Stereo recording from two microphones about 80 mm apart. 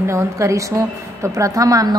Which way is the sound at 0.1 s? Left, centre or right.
Right.